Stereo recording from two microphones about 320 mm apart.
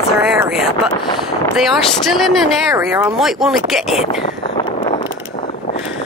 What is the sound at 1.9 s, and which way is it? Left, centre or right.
Speech, centre.